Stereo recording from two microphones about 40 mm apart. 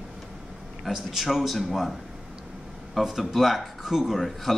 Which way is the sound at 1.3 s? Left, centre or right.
Centre.